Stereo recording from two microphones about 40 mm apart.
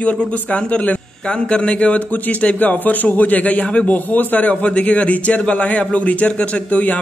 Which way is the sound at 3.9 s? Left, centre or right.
Left.